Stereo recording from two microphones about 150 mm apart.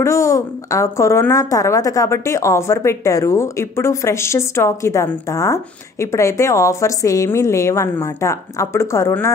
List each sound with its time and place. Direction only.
0.0 s a woman's voice: 20° left (ahead or behind)